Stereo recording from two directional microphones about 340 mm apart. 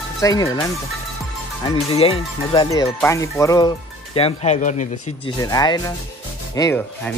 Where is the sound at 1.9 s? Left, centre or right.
Centre.